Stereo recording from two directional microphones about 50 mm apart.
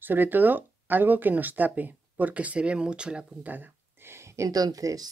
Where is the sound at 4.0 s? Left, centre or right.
Right.